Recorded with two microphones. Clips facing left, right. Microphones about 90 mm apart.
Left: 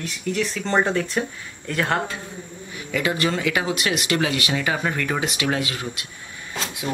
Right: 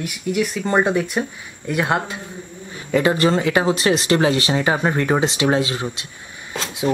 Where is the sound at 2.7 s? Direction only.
35° right (ahead or behind).